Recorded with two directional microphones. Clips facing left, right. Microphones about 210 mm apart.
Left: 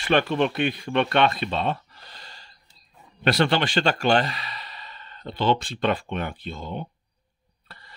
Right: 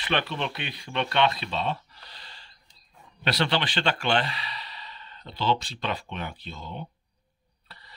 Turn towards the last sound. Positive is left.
turn(degrees=50)  # may be behind; listen again after turning